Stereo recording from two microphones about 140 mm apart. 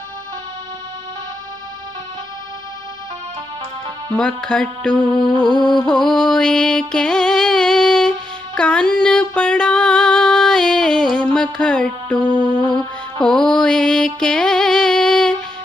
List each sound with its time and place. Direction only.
4.1 s music: 5° left (ahead or behind)
5.1 s music: 35° left (ahead or behind)
5.9 s music: 5° left (ahead or behind)
12.2 s music: 30° right (ahead or behind)
13.2 s mantra: 5° left (ahead or behind)